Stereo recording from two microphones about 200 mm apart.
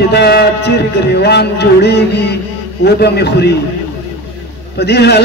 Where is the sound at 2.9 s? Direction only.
55° left (ahead or behind).